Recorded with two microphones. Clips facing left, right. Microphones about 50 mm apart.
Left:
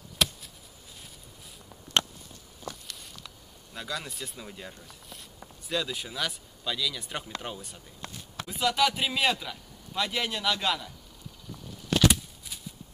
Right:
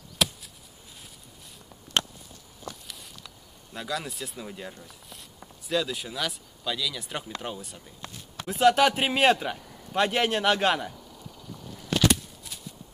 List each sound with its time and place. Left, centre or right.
0.2 s chop: centre
3.7 s speech: centre
8.5 s speech: right
12.1 s a sound: centre